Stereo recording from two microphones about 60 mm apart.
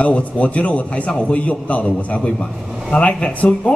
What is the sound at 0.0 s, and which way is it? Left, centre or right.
Speech, left.